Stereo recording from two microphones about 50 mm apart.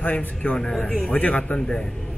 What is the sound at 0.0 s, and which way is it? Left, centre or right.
Speech, left.